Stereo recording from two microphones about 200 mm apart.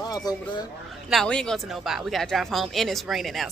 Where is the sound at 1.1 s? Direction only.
5° left (ahead or behind).